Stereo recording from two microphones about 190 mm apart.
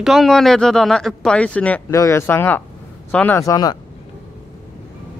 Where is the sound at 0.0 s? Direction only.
Centre (ahead or behind); by 3.7 s 20° left (ahead or behind).